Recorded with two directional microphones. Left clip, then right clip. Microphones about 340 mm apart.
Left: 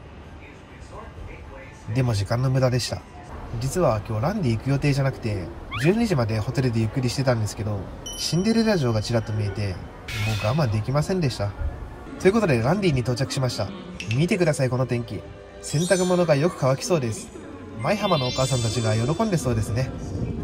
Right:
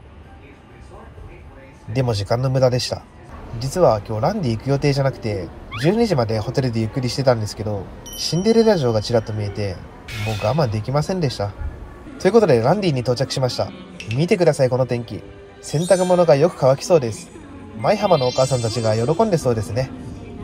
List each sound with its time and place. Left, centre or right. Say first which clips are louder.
2.0 s speech: right 6 dB; centre